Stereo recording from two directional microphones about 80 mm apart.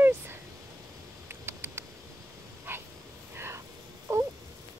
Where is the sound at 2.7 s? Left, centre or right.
Right.